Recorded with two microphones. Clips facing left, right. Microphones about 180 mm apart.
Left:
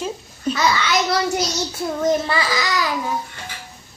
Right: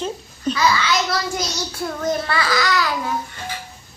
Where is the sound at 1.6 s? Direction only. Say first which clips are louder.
Left 3 dB; 20° left (ahead or behind).